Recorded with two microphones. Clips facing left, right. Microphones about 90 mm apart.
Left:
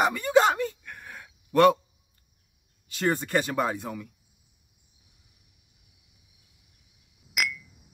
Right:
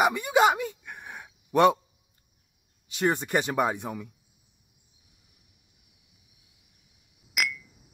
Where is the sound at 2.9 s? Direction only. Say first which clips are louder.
Even; 20° right (ahead or behind).